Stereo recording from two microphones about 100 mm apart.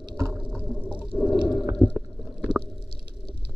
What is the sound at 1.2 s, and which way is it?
Whale vocalization, 5° right (ahead or behind).